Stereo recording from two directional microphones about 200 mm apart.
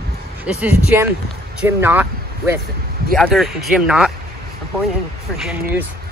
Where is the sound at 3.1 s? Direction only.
Centre (ahead or behind).